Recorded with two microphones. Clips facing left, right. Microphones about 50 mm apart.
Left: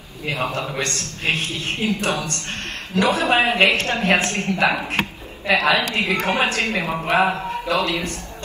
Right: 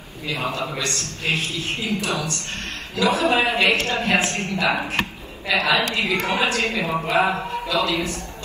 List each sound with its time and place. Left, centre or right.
0.3 s a man's voice: left